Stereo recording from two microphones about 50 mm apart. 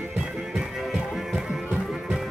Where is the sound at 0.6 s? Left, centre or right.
Centre.